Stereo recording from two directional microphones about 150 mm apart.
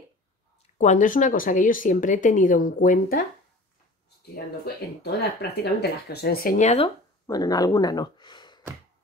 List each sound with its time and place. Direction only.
0.7 s speech: 55° left (ahead or behind)
5.0 s speech: 90° left
6.6 s speech: 45° left (ahead or behind)
7.2 s speech: 25° left (ahead or behind)